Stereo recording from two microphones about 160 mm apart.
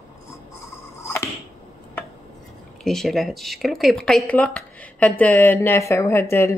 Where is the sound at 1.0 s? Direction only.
15° left (ahead or behind).